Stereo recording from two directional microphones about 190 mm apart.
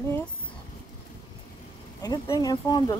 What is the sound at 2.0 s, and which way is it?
Speech, 20° left (ahead or behind).